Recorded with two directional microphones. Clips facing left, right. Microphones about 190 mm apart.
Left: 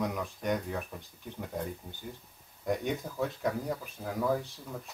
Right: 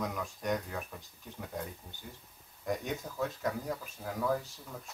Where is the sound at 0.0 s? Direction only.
Centre (ahead or behind).